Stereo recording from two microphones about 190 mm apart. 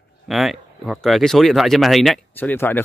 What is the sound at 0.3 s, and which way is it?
Speech, centre (ahead or behind).